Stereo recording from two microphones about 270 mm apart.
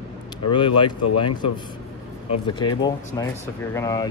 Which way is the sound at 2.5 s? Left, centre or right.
Centre.